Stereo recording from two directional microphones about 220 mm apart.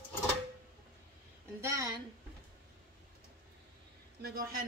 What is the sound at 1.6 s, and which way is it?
Speech, 15° right (ahead or behind).